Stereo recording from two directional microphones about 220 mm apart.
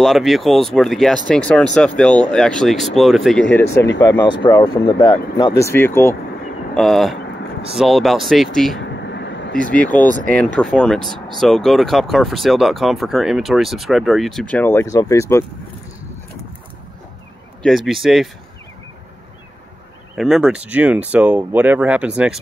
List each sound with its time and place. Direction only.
0.0 s speech: centre (ahead or behind)
4.2 s speech: 20° left (ahead or behind); by 8.7 s centre (ahead or behind)
9.0 s vehicle: 50° left (ahead or behind)
10.3 s speech: 5° left (ahead or behind)
17.6 s speech: centre (ahead or behind)
20.2 s speech: centre (ahead or behind)